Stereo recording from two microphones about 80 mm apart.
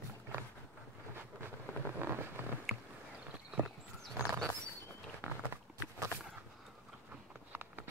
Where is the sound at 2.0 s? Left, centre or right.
Right.